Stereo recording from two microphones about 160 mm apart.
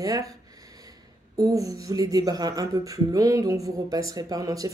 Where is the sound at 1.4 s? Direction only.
20° right (ahead or behind).